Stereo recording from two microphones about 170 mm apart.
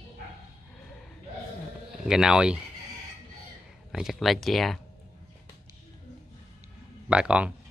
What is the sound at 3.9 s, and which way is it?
Speech, centre (ahead or behind).